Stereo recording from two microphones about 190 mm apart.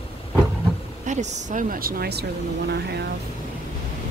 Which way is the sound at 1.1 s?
40° right (ahead or behind).